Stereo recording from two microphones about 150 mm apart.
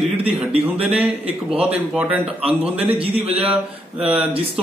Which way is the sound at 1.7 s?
10° right (ahead or behind).